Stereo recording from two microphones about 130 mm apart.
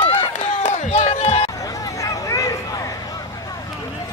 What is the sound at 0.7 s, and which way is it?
Run, 65° left (ahead or behind).